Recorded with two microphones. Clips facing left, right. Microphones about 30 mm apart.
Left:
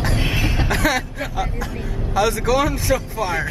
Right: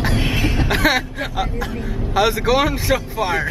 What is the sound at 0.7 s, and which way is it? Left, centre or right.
Speech, centre.